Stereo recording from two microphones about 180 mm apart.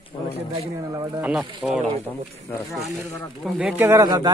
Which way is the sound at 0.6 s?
20° right (ahead or behind).